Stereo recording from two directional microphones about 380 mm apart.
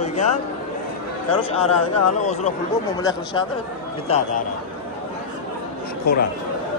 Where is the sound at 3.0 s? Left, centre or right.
Centre.